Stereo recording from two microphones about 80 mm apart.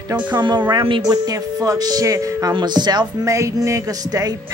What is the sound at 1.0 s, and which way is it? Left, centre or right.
Speech, right.